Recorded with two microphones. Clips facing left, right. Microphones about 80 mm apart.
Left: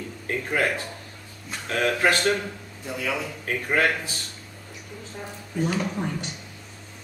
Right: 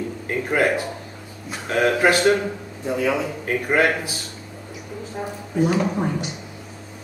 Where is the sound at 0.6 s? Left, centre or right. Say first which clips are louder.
Right 6 dB; centre.